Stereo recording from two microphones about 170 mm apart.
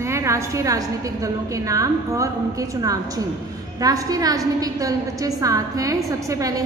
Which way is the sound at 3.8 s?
20° right (ahead or behind).